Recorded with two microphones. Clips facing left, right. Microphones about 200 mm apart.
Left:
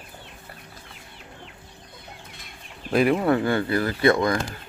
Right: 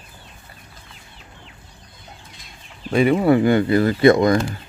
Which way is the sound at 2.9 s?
Centre (ahead or behind).